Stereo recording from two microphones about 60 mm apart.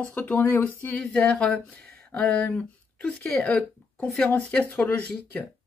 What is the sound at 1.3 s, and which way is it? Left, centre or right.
A woman's voice, centre.